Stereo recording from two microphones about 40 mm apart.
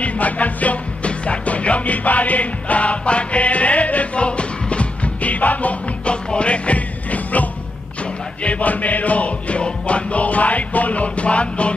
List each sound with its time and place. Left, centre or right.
0.0 s music: left